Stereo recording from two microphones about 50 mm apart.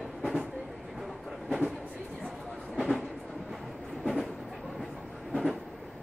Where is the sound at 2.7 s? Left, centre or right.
Centre.